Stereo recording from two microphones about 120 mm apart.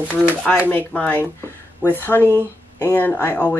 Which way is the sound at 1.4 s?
15° left (ahead or behind).